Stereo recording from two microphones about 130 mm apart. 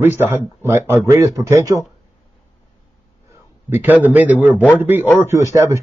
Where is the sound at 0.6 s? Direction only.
20° right (ahead or behind).